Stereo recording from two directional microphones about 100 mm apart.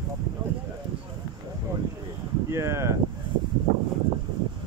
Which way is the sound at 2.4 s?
30° right (ahead or behind).